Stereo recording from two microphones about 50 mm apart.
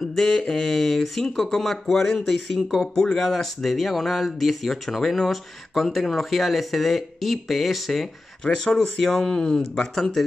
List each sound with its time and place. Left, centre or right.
0.0 s speech: centre
2.9 s speech: centre
3.3 s speech: centre
8.5 s speech: centre